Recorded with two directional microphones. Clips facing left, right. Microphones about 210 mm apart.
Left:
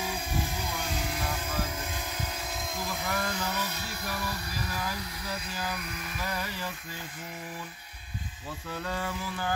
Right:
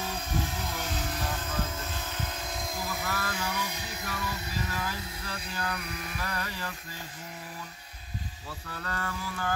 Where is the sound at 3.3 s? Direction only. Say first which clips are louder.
Left 1 dB; 10° right (ahead or behind).